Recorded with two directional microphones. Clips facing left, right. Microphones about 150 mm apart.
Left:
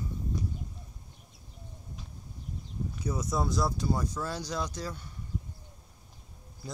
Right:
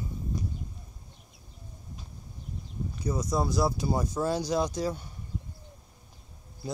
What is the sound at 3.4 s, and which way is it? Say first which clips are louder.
Speech: right 1 dB; 5° right (ahead or behind).